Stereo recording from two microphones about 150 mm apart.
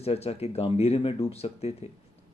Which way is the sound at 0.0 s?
45° left (ahead or behind).